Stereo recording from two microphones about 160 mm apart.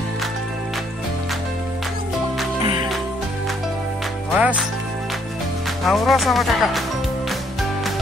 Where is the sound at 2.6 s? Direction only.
30° right (ahead or behind).